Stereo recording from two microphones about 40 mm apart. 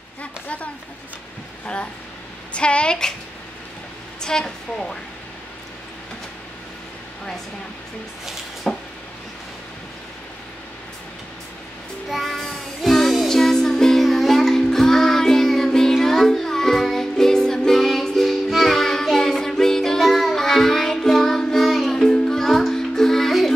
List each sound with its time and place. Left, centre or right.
0.2 s a sound: left
2.5 s a woman's voice: left
4.2 s a woman's voice: centre
8.6 s a sound: centre
12.1 s child singing: centre
13.3 s music: centre
21.9 s music: centre
22.5 s music: centre